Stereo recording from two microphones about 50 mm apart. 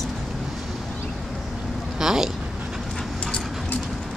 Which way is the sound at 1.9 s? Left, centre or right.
Centre.